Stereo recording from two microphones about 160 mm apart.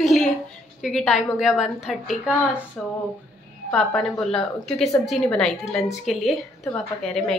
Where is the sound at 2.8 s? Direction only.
5° left (ahead or behind).